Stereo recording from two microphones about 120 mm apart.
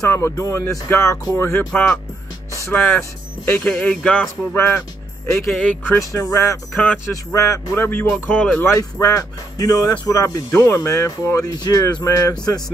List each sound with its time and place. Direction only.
0.1 s speech: 25° left (ahead or behind); by 4.3 s 5° left (ahead or behind)
4.6 s speech: 20° left (ahead or behind)
5.3 s speech: 5° left (ahead or behind)
6.1 s speech: 25° left (ahead or behind)
8.7 s speech: 25° left (ahead or behind)